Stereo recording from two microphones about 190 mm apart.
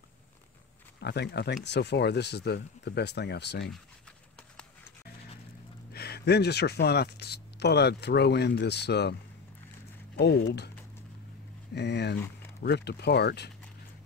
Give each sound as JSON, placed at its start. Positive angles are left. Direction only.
{"t": 1.0, "sound": "speech", "side_deg": 60}
{"t": 5.9, "sound": "speech", "side_deg": 55}
{"t": 10.1, "sound": "speech", "side_deg": 60}
{"t": 11.7, "sound": "speech", "side_deg": 60}